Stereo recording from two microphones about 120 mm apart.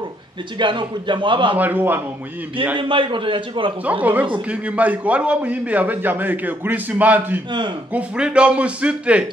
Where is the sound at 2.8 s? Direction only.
45° right (ahead or behind).